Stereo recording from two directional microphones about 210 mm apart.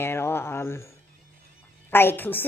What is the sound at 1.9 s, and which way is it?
Speech, 10° left (ahead or behind).